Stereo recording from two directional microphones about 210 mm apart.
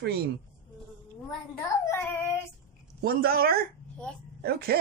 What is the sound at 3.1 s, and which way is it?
Speech, 45° right (ahead or behind).